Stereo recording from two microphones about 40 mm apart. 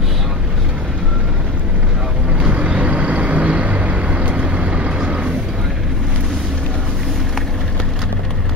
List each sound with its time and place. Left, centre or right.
2.5 s vehicle: right